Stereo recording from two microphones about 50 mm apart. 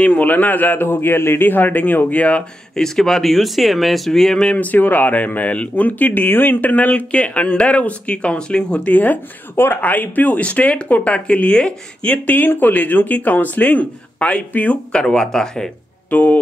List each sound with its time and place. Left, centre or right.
0.0 s speech: left
2.7 s speech: centre
4.6 s speech: left; by 15.7 s centre
16.1 s speech: left